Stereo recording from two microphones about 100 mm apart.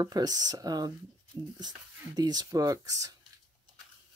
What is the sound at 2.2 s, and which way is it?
Speech, 40° right (ahead or behind).